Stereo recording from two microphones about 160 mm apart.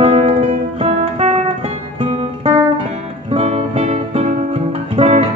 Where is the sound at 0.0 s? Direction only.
40° right (ahead or behind).